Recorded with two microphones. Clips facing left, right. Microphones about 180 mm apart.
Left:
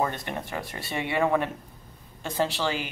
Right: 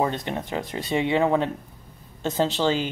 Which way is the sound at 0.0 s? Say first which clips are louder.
Right 4 dB; 20° right (ahead or behind).